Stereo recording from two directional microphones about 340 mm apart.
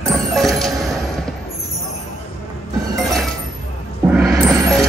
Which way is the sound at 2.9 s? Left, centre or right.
Centre.